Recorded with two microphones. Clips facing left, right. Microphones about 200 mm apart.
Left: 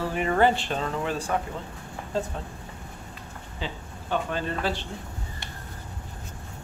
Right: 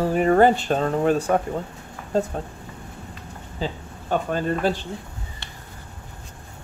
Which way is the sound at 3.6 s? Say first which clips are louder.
Right 6 dB; 40° right (ahead or behind).